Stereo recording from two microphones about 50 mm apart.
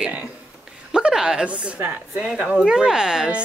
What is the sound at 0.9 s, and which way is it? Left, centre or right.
A woman's voice, centre.